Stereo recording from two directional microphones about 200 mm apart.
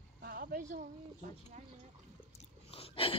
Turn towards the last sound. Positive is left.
turn(degrees=25)  # may be behind; listen again after turning